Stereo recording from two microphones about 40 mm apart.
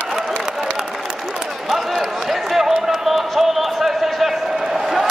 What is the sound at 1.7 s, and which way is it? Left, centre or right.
Run, centre.